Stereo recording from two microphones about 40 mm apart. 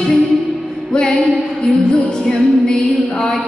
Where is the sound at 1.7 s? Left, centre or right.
Centre.